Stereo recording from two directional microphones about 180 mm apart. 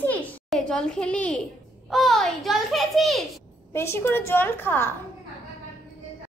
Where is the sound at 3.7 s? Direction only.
15° left (ahead or behind).